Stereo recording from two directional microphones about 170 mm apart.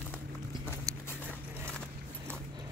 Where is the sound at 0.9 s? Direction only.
20° right (ahead or behind).